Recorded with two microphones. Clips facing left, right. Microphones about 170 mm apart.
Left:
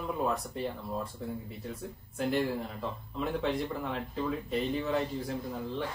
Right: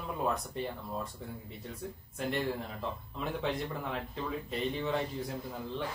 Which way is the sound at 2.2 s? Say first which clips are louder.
Left 4 dB; centre (ahead or behind).